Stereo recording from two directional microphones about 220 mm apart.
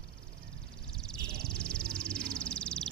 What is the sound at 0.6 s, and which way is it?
Music, centre (ahead or behind).